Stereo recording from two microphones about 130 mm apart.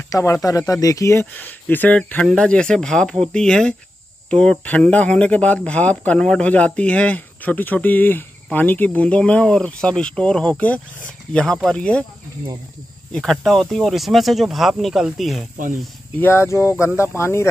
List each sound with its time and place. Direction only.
0.1 s speech: 25° left (ahead or behind)
1.2 s speech: 15° left (ahead or behind)
13.1 s speech: centre (ahead or behind)
16.2 s speech: 15° left (ahead or behind)